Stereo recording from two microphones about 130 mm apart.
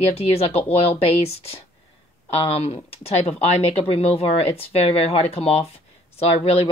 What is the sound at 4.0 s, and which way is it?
Speech, 50° left (ahead or behind).